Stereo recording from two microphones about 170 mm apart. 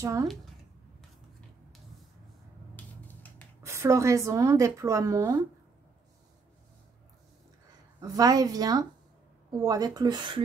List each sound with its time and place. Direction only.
0.0 s a woman's voice: 20° right (ahead or behind)
2.7 s a sound: 10° left (ahead or behind)
3.6 s speech: 15° right (ahead or behind)
8.0 s a woman's voice: 20° right (ahead or behind)